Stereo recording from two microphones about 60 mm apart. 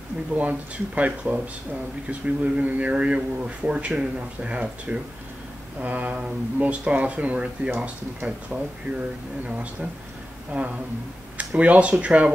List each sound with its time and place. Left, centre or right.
0.4 s speech: right
10.5 s speech: centre